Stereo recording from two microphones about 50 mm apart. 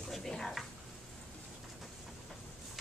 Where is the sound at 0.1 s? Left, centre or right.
Centre.